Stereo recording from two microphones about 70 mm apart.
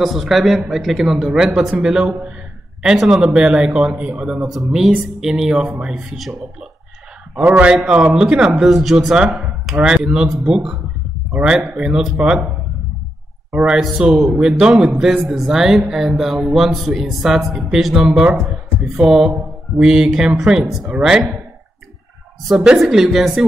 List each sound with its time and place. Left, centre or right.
0.0 s a man's voice: centre
7.4 s a man's voice: right
7.7 s speech: centre
13.5 s speech: centre
13.7 s a man's voice: centre
22.5 s a man's voice: centre